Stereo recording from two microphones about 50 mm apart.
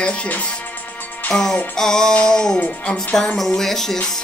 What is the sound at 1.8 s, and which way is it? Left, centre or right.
Music, centre.